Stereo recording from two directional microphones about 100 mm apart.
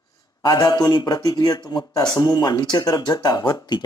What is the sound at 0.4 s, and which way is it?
Speech, 40° left (ahead or behind).